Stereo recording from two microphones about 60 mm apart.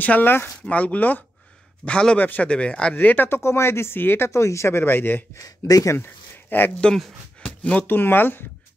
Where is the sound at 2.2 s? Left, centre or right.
Left.